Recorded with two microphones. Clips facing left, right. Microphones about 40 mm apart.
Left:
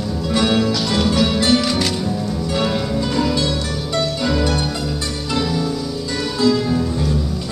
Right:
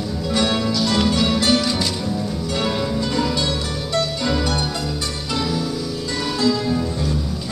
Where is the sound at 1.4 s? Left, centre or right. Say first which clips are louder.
Left 2 dB; centre.